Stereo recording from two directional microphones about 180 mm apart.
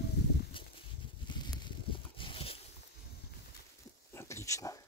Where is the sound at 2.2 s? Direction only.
30° left (ahead or behind).